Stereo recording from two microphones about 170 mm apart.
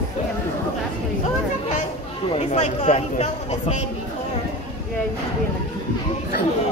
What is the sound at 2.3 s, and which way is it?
Speech, 45° left (ahead or behind).